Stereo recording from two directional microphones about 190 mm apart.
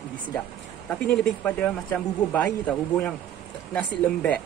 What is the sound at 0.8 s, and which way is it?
Speech, 5° left (ahead or behind).